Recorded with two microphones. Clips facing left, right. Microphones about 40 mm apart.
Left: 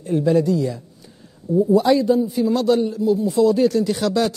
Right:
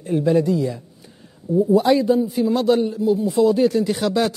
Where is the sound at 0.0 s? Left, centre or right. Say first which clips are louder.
Even; centre.